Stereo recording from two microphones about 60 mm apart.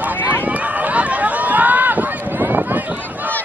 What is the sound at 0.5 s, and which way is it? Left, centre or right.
Run, right.